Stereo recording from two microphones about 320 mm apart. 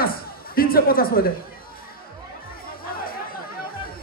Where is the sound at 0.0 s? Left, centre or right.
Left.